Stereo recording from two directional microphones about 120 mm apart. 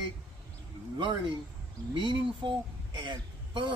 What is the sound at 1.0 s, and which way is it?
A woman's voice, 40° right (ahead or behind).